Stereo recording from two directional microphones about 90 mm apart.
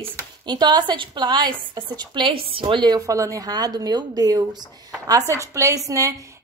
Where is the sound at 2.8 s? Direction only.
40° right (ahead or behind).